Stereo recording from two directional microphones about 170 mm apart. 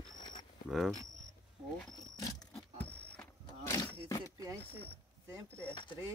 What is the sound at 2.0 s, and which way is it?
Vehicle, 20° left (ahead or behind).